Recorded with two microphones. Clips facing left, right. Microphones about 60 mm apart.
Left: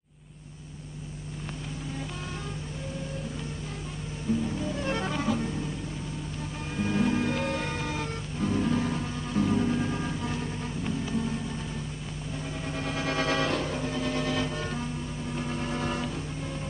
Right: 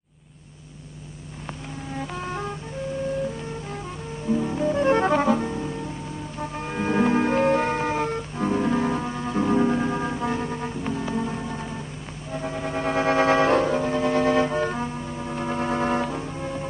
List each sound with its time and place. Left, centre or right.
2.2 s music: right
4.3 s music: right